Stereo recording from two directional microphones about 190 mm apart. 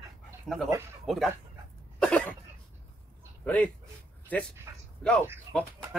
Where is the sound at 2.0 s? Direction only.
5° left (ahead or behind).